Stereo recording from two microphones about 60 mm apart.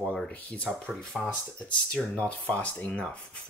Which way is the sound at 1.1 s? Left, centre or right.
Centre.